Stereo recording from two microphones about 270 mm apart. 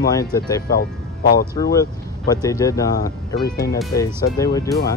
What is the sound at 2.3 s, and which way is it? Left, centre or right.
Speech, centre.